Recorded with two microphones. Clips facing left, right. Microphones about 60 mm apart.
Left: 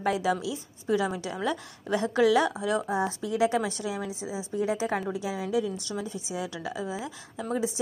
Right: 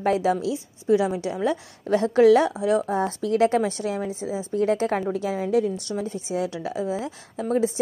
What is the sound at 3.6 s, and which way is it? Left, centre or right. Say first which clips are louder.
Speech: right 5 dB; right.